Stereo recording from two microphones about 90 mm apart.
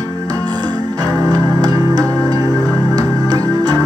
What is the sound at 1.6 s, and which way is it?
Music, 40° right (ahead or behind).